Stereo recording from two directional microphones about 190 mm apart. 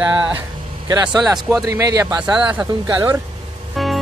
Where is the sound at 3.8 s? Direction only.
Centre (ahead or behind).